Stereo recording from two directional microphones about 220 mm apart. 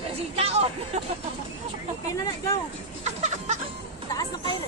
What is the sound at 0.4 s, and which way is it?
Hubbub, 30° right (ahead or behind).